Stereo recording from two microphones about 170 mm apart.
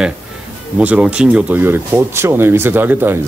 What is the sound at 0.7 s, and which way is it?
Speech, 10° right (ahead or behind).